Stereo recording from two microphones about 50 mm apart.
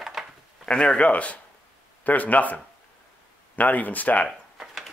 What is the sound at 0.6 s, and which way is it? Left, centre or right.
Speech, left.